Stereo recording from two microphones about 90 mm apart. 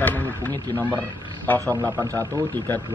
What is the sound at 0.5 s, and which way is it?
Speech, 45° right (ahead or behind).